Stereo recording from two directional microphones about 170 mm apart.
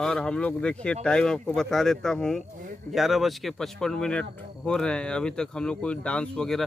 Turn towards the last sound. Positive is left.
turn(degrees=5)  # may be behind; listen again after turning